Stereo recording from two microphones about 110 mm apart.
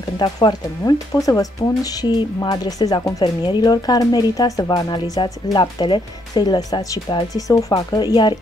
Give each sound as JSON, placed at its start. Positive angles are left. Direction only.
{"t": 0.2, "sound": "speech", "side_deg": 40}